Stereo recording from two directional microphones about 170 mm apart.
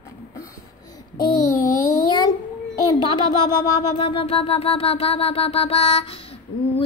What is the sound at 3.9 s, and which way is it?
Music, 30° left (ahead or behind).